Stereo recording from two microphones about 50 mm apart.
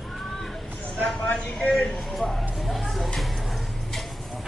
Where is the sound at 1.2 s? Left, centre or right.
Centre.